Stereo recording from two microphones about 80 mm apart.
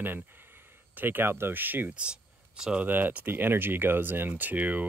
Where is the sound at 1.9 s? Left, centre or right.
Centre.